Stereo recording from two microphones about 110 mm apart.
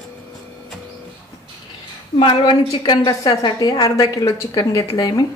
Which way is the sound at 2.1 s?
50° left (ahead or behind).